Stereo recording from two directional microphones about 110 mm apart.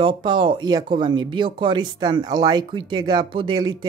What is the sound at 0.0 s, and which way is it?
Speech, 50° right (ahead or behind).